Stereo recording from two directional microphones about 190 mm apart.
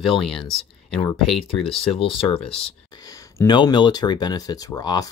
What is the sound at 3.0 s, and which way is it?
Speech, 15° left (ahead or behind).